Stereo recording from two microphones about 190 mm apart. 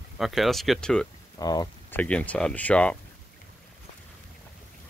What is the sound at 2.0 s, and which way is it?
Speech, 5° left (ahead or behind).